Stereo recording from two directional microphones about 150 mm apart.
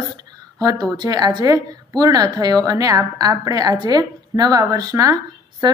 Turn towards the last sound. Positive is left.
turn(degrees=-30)  # may be behind; listen again after turning